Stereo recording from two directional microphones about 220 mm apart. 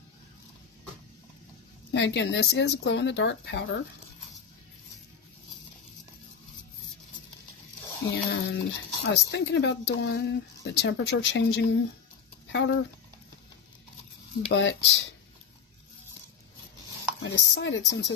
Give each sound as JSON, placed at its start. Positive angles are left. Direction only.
{"t": 1.9, "sound": "speech", "side_deg": 55}
{"t": 8.1, "sound": "speech", "side_deg": 50}
{"t": 14.5, "sound": "speech", "side_deg": 55}
{"t": 17.2, "sound": "speech", "side_deg": 55}